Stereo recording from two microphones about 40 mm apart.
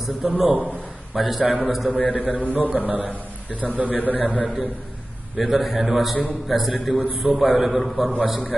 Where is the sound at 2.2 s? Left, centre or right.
Right.